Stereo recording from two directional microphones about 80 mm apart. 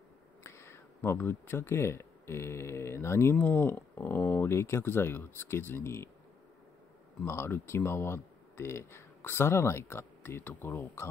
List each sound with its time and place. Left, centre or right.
0.4 s speech: left
7.2 s speech: left